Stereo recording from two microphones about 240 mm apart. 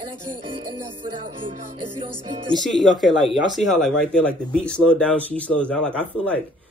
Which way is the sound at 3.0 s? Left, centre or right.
Centre.